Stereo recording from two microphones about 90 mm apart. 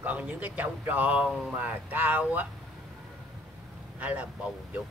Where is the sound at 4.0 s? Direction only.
15° right (ahead or behind).